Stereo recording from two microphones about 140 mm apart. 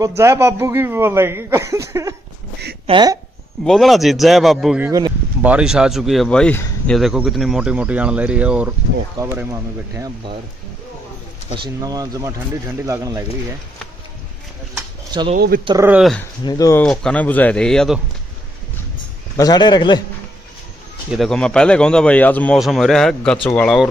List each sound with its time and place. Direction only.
0.0 s a man's voice: 20° right (ahead or behind)
3.6 s a man's voice: centre (ahead or behind); by 10.1 s 20° right (ahead or behind)
11.5 s a man's voice: 30° right (ahead or behind)
15.7 s speech: 35° right (ahead or behind)
16.4 s speech: 25° left (ahead or behind)
16.7 s speech: 5° left (ahead or behind)
19.3 s speech: 30° left (ahead or behind)
21.1 s speech: 5° left (ahead or behind)
22.6 s speech: centre (ahead or behind)